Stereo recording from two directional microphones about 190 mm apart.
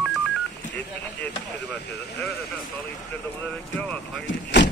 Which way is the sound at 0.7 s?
10° left (ahead or behind).